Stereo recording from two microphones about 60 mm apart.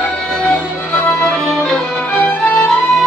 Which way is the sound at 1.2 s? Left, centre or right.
Centre.